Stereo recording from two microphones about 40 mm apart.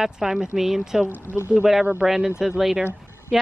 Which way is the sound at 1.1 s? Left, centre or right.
Right.